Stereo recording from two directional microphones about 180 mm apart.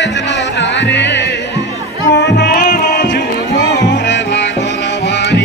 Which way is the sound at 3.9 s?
80° left.